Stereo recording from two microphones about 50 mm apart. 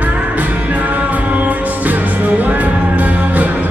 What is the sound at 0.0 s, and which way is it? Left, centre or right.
Music, right.